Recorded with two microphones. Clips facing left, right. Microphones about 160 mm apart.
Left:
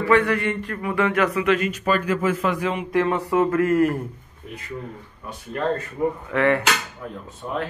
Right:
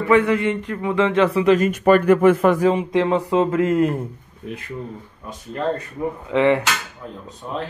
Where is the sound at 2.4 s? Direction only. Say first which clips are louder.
Right 7 dB; 45° right (ahead or behind).